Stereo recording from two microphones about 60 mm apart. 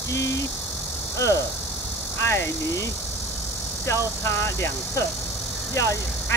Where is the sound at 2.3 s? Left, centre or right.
Left.